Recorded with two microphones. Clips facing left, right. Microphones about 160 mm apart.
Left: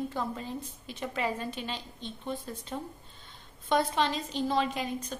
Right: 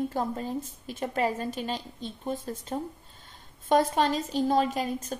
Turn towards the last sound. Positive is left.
turn(degrees=-45)  # may be behind; listen again after turning